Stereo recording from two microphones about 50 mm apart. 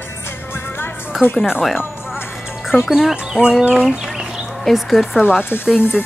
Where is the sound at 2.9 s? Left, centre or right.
Centre.